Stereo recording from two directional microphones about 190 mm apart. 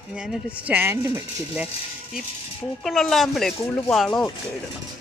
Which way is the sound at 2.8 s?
Centre (ahead or behind).